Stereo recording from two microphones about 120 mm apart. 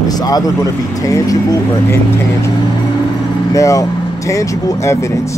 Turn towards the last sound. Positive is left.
turn(degrees=25)  # may be behind; listen again after turning